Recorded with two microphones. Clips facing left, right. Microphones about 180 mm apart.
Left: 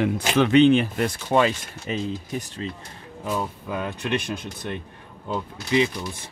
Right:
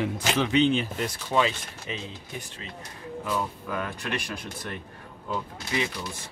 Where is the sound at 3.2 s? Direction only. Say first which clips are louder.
Left 3 dB; 20° left (ahead or behind).